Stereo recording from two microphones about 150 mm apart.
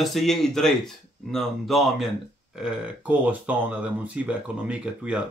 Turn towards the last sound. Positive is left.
turn(degrees=-5)  # may be behind; listen again after turning